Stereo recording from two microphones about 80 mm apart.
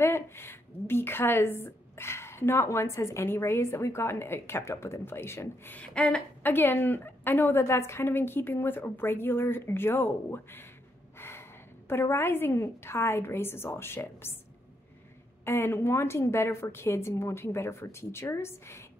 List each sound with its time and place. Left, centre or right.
0.0 s a woman's voice: left
5.8 s a sound: centre
6.4 s a woman's voice: left
15.4 s a woman's voice: left